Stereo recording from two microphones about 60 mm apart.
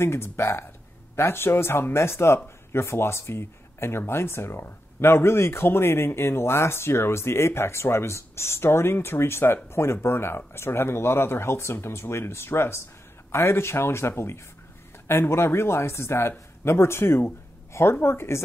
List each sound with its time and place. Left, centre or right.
0.0 s speech: left